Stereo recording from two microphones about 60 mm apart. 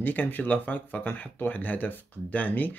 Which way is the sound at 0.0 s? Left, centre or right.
Left.